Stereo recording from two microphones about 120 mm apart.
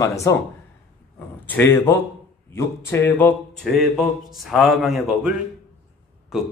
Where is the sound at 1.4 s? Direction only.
15° left (ahead or behind).